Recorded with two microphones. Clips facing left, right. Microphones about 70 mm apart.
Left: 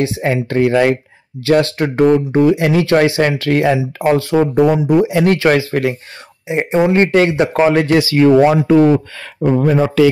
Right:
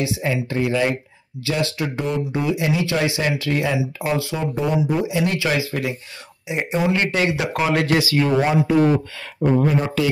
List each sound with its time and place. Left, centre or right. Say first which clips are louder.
0.0 s speech: left 6 dB; left
1.4 s speech: left 10 dB; left
4.4 s speech: left 9 dB; left
6.5 s speech: left 7 dB; left
8.2 s speech: left 11 dB; left
9.4 s speech: left 5 dB; left